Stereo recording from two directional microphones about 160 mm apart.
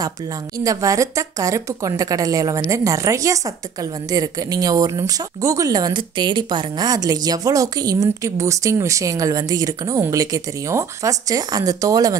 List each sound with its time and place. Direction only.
0.7 s speech: 20° right (ahead or behind)